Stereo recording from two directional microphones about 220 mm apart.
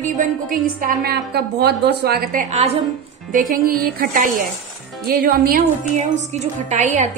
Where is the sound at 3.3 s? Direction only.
40° right (ahead or behind).